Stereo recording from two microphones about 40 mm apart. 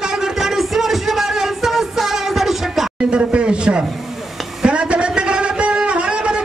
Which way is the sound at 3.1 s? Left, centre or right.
Right.